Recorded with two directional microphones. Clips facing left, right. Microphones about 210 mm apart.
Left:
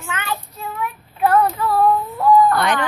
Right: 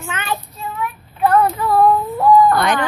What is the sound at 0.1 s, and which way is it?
Child singing, 20° right (ahead or behind).